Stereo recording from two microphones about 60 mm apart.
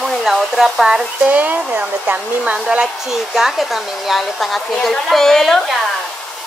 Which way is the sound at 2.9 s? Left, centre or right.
Centre.